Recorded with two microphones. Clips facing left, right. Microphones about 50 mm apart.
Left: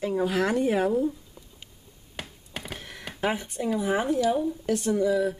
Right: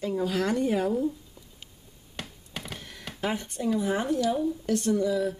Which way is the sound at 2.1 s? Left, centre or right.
Centre.